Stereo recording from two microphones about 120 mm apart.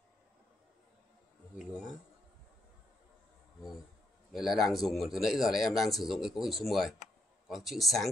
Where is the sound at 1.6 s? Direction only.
Centre (ahead or behind).